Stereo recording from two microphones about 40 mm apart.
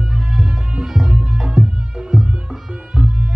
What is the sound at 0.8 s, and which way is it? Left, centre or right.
Music, centre.